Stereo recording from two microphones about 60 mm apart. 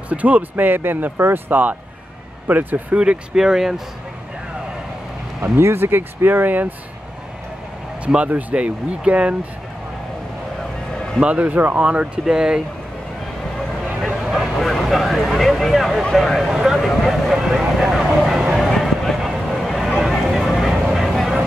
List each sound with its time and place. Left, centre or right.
0.1 s speech: right
3.0 s speech: centre
5.4 s speech: right
8.0 s speech: right
11.1 s speech: right
14.0 s vehicle: centre
16.0 s speech: centre
16.4 s speech: centre
17.1 s vehicle: centre
18.7 s a sound: centre
20.9 s vehicle: centre